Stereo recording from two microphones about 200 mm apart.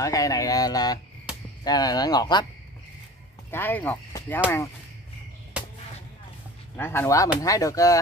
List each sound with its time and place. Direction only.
0.0 s speech: 15° left (ahead or behind)
3.5 s speech: 10° left (ahead or behind)
6.8 s speech: 10° left (ahead or behind)